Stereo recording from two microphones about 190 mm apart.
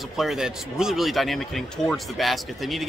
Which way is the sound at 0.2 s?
Centre (ahead or behind).